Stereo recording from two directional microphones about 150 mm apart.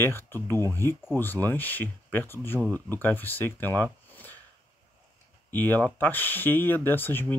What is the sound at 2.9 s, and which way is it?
Speech, 10° left (ahead or behind).